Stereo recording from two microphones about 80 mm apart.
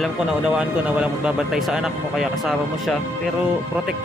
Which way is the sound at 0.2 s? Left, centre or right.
Centre.